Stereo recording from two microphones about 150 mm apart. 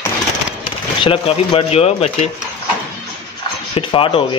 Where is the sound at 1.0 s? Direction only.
40° left (ahead or behind).